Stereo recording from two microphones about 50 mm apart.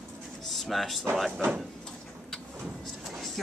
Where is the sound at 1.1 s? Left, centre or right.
Centre.